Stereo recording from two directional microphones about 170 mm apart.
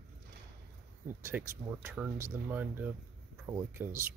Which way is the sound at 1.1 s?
15° right (ahead or behind).